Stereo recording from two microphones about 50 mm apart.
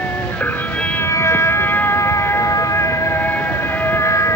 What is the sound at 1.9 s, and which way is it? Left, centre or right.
Siren, left.